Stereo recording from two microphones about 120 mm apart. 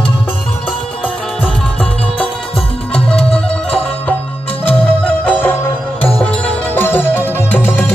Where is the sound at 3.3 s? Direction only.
10° left (ahead or behind).